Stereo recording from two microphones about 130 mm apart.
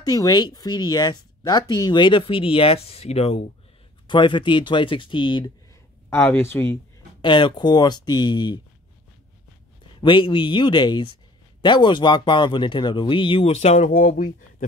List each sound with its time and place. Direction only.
0.0 s speech: 30° left (ahead or behind); by 3.4 s 50° left (ahead or behind)
4.1 s speech: 40° left (ahead or behind)
6.0 s speech: 20° left (ahead or behind)
7.2 s speech: 40° left (ahead or behind)
9.9 s speech: 40° left (ahead or behind); by 14.3 s 75° left (ahead or behind)